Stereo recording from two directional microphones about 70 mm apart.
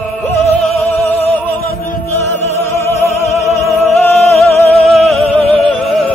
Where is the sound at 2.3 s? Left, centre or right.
Left.